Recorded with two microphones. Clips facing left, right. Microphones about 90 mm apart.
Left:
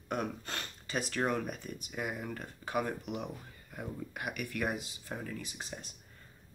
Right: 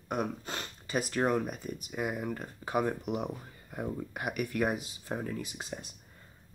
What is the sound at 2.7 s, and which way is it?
Speech, 25° right (ahead or behind).